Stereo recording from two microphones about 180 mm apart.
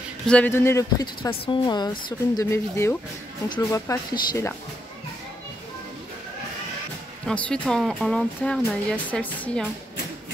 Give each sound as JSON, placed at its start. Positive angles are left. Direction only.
{"t": 0.3, "sound": "speech", "side_deg": 10}
{"t": 7.2, "sound": "speech", "side_deg": 5}